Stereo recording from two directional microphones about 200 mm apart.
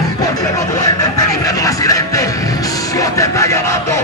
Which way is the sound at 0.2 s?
20° left (ahead or behind).